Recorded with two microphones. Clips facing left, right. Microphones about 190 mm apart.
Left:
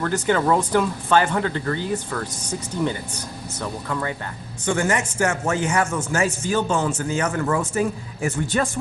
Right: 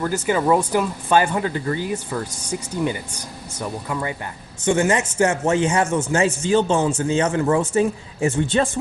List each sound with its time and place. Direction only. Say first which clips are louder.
0.0 s speech: even; 10° right (ahead or behind)
3.6 s speech: right 1 dB; 15° right (ahead or behind)